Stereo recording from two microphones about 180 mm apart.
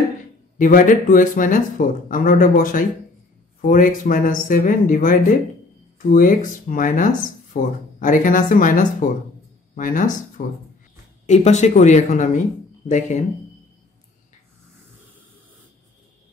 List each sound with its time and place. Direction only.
0.6 s speech: 45° left (ahead or behind)